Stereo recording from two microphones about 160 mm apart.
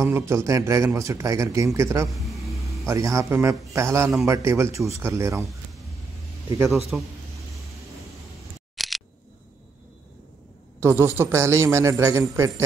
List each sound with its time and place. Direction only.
0.0 s a man's voice: 15° right (ahead or behind)
2.0 s speech: centre (ahead or behind)
2.8 s a man's voice: 20° right (ahead or behind)
6.9 s a man's voice: 5° right (ahead or behind)
8.7 s camera: centre (ahead or behind)
10.8 s a man's voice: 15° right (ahead or behind)